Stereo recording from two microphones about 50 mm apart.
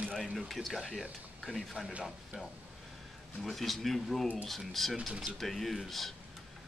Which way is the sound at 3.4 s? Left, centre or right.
Centre.